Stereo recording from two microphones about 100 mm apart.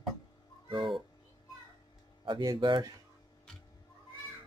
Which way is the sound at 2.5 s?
50° right (ahead or behind).